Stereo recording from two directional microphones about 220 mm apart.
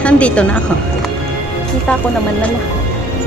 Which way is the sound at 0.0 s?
5° left (ahead or behind).